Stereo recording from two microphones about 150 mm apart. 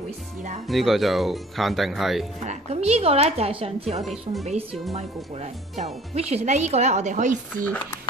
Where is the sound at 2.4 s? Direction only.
45° right (ahead or behind).